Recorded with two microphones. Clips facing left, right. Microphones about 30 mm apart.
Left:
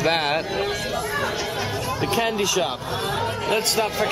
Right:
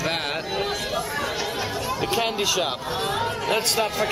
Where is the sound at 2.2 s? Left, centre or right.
Centre.